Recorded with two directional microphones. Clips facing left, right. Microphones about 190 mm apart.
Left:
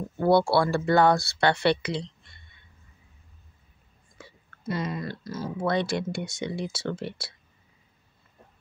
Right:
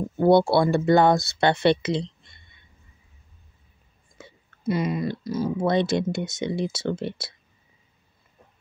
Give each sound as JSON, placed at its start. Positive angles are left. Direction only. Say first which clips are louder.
{"t": 0.2, "sound": "speech", "louder": "right 3 dB", "side_deg": -20}
{"t": 4.2, "sound": "speech", "louder": "right 5 dB", "side_deg": -15}